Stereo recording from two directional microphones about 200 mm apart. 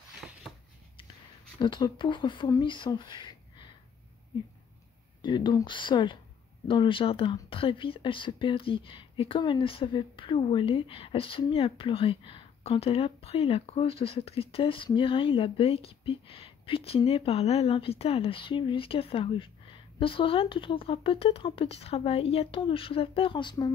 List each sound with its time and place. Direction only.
1.6 s speech: 25° left (ahead or behind)
5.2 s speech: 20° left (ahead or behind)